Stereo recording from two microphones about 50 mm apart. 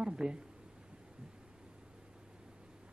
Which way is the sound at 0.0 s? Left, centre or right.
Centre.